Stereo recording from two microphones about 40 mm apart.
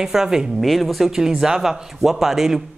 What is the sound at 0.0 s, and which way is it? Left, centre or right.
Speech, centre.